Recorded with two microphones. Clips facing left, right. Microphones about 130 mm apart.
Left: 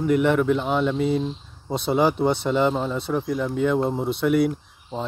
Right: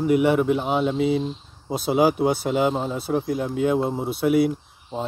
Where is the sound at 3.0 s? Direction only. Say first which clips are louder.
Right 1 dB; 45° right (ahead or behind).